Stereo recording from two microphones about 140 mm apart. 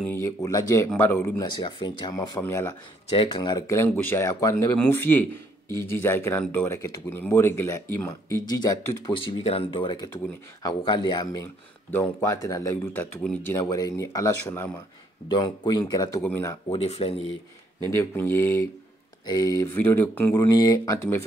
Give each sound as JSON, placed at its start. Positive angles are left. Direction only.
{"t": 0.0, "sound": "speech", "side_deg": 20}
{"t": 1.4, "sound": "speech", "side_deg": 35}
{"t": 3.1, "sound": "speech", "side_deg": 40}
{"t": 3.6, "sound": "speech", "side_deg": 15}
{"t": 9.1, "sound": "speech", "side_deg": 40}
{"t": 11.9, "sound": "speech", "side_deg": 20}
{"t": 15.2, "sound": "speech", "side_deg": 35}
{"t": 16.2, "sound": "speech", "side_deg": 15}
{"t": 16.6, "sound": "speech", "side_deg": 45}
{"t": 17.9, "sound": "speech", "side_deg": 15}
{"t": 20.4, "sound": "speech", "side_deg": 25}